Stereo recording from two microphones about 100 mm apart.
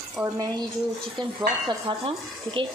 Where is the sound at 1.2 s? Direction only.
45° right (ahead or behind).